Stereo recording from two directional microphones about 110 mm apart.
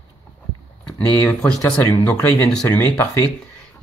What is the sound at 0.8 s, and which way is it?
Speech, 15° left (ahead or behind).